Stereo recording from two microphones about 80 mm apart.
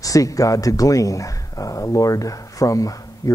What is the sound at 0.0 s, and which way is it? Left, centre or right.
Speech, left.